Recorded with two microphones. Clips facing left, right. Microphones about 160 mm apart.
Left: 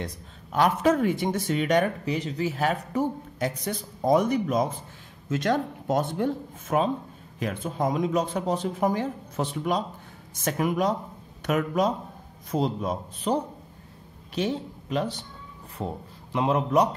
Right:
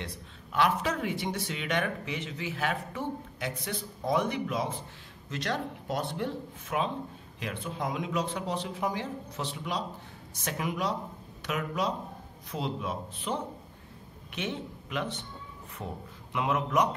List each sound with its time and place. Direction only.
0.0 s a man's voice: 45° left (ahead or behind)